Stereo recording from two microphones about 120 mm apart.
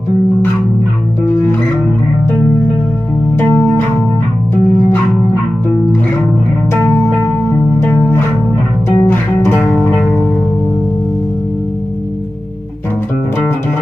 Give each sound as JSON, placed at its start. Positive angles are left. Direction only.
{"t": 1.2, "sound": "music", "side_deg": 20}
{"t": 3.5, "sound": "music", "side_deg": 20}
{"t": 6.7, "sound": "music", "side_deg": 20}